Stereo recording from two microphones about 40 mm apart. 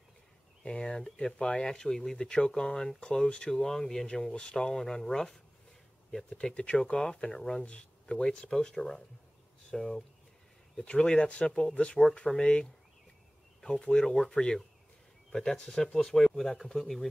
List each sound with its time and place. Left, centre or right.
0.7 s speech: centre
3.5 s speech: centre
4.3 s speech: left
6.4 s speech: left
6.8 s speech: centre
10.9 s speech: left
13.7 s speech: centre